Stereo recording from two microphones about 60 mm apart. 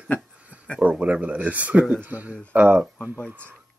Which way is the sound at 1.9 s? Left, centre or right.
Right.